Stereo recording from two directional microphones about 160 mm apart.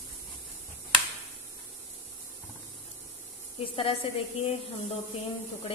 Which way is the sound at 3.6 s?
35° left (ahead or behind).